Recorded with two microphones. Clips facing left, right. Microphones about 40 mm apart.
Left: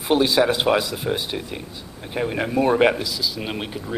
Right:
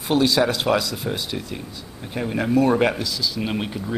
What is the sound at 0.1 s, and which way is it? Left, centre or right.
Speech, centre.